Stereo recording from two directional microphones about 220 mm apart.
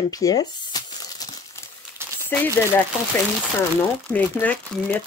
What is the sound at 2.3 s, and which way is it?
Speech, 10° left (ahead or behind).